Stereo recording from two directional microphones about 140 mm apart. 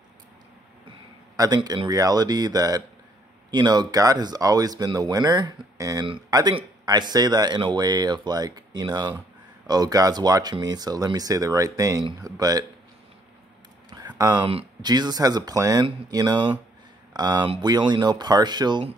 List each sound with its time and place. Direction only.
1.3 s speech: 30° right (ahead or behind)
13.8 s a sound: 30° right (ahead or behind)
14.5 s speech: 35° right (ahead or behind)